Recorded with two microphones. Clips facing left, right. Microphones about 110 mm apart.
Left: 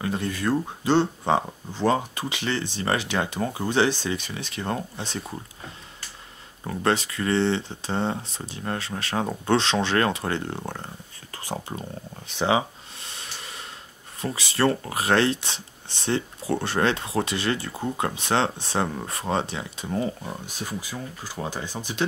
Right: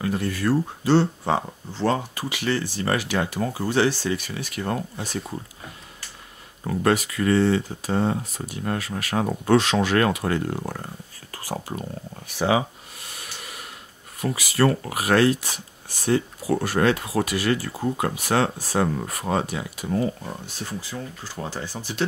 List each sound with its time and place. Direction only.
0.0 s speech: 25° left (ahead or behind)
6.8 s speech: 30° left (ahead or behind)
12.3 s a sound: 25° left (ahead or behind)
14.2 s speech: 30° left (ahead or behind)
20.4 s speech: 15° left (ahead or behind)